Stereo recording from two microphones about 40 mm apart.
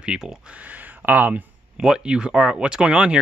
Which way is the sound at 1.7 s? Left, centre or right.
Centre.